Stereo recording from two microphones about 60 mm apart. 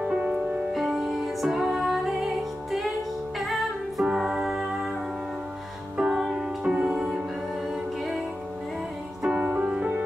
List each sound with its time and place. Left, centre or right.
0.0 s music: centre
0.7 s music: centre
5.9 s music: centre
9.4 s music: right